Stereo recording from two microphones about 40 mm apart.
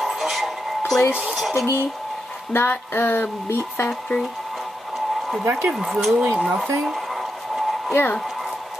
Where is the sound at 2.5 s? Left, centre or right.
Left.